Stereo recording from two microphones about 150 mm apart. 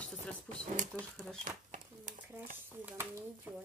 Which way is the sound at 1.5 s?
60° right (ahead or behind).